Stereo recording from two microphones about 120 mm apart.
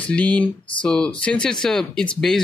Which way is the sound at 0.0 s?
10° left (ahead or behind).